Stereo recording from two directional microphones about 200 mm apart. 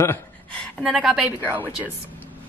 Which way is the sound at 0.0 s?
10° left (ahead or behind).